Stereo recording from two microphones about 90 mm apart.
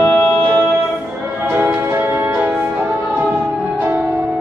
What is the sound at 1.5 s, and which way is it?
Music, 25° right (ahead or behind).